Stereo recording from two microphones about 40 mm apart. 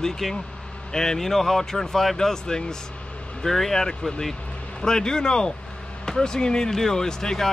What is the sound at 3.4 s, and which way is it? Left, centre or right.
Speech, centre.